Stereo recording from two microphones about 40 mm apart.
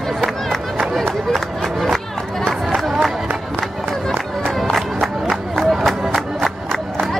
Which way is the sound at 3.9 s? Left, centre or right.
Centre.